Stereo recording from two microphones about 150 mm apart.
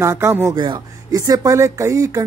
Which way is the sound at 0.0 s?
15° right (ahead or behind).